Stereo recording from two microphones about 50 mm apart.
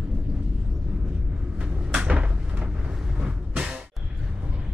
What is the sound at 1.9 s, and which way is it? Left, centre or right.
Cupboard open or close, right.